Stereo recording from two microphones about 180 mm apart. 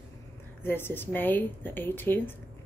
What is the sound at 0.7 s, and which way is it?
A woman's voice, 10° left (ahead or behind).